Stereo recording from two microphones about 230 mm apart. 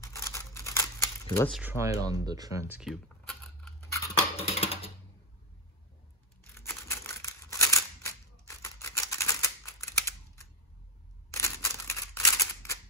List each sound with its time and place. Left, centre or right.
0.0 s scissors: centre
1.3 s speech: centre
1.6 s speech: centre
4.4 s typing: left
6.5 s scissors: centre